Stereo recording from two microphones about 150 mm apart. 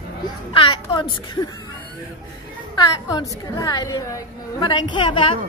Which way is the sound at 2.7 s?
25° left (ahead or behind).